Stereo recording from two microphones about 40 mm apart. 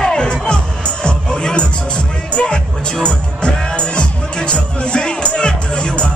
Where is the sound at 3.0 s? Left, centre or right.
Left.